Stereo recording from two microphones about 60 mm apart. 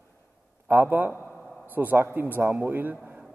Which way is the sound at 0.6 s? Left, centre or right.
Right.